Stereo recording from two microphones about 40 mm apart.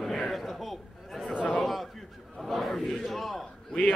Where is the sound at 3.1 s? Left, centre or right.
Centre.